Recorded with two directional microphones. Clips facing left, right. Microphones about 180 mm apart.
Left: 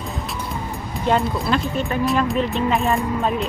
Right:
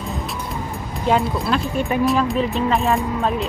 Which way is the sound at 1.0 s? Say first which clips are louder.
Right 1 dB; centre (ahead or behind).